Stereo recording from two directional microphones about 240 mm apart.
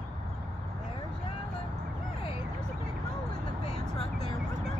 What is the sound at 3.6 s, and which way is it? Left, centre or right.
Vehicle, left.